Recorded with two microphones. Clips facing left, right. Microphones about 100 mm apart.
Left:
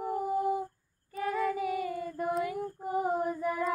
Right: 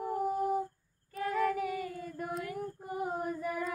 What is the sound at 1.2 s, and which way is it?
Female singing, 20° left (ahead or behind).